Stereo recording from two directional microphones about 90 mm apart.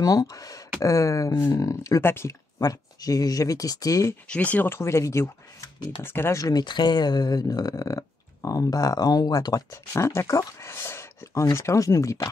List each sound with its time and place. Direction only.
0.0 s speech: 40° left (ahead or behind)
2.6 s speech: 40° left (ahead or behind)
4.3 s speech: 15° left (ahead or behind)
4.7 s speech: 30° left (ahead or behind)
6.4 s speech: 55° left (ahead or behind)